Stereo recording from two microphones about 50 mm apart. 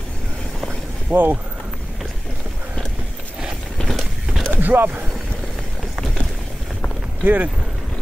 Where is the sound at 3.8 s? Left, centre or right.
Centre.